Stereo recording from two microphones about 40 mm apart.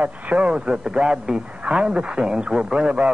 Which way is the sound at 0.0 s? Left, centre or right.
Right.